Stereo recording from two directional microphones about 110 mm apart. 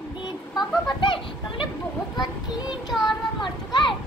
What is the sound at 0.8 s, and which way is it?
Children playing, 50° left (ahead or behind).